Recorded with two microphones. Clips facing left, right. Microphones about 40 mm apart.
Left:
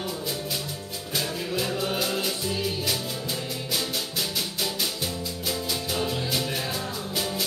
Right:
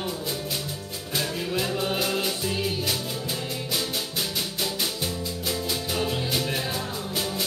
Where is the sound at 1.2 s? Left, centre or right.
Centre.